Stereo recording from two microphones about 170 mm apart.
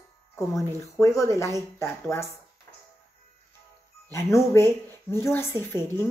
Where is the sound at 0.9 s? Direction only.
15° left (ahead or behind).